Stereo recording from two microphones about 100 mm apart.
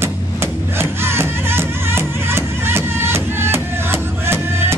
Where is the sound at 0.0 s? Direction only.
25° right (ahead or behind).